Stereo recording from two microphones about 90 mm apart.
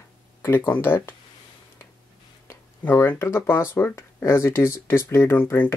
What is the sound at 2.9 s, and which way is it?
Speech, 30° left (ahead or behind).